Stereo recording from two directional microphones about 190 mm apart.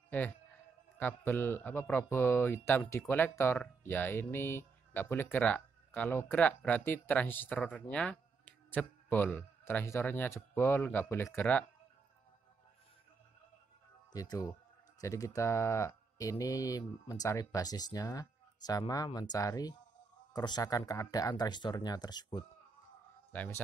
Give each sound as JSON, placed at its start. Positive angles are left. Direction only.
{"t": 0.1, "sound": "a man's voice", "side_deg": 10}
{"t": 14.1, "sound": "speech", "side_deg": 20}
{"t": 23.3, "sound": "a man's voice", "side_deg": 10}